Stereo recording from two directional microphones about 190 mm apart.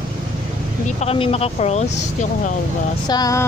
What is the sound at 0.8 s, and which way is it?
Speech, 30° left (ahead or behind).